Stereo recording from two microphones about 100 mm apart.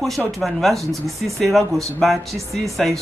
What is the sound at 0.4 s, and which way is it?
A man's voice, centre (ahead or behind).